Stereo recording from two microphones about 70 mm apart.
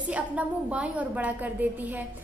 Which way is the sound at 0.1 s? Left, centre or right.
Centre.